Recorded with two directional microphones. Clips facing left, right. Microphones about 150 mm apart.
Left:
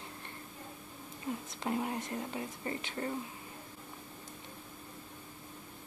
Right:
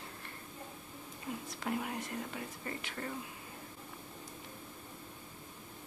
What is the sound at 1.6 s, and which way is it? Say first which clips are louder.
Speech: left 3 dB; 30° left (ahead or behind).